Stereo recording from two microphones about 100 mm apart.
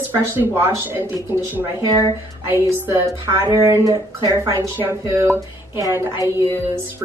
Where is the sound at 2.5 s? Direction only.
20° right (ahead or behind).